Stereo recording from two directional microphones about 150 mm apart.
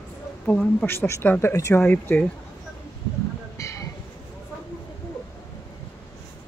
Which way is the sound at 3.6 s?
20° left (ahead or behind).